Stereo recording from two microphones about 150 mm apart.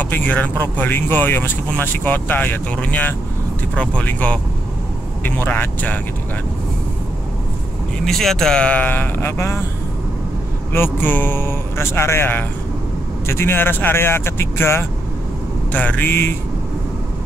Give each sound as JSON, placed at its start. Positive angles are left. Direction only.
{"t": 0.0, "sound": "speech", "side_deg": 10}
{"t": 8.0, "sound": "speech", "side_deg": 0}
{"t": 10.7, "sound": "speech", "side_deg": 15}